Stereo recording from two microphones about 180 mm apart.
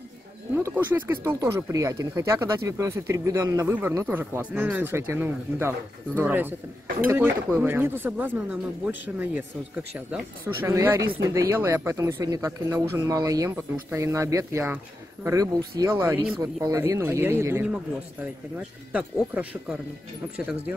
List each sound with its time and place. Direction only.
0.6 s speech: 10° right (ahead or behind)